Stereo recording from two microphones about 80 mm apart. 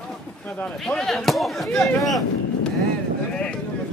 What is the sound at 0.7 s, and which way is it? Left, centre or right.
Speech, centre.